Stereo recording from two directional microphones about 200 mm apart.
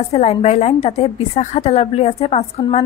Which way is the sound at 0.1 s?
30° left (ahead or behind).